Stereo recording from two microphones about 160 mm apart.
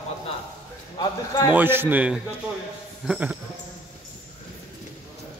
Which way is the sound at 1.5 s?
15° right (ahead or behind).